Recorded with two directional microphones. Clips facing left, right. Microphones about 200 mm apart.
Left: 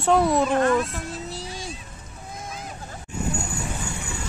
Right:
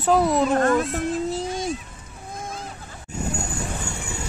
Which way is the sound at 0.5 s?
45° right (ahead or behind).